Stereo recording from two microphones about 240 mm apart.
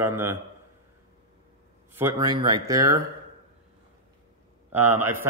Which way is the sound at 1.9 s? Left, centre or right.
Centre.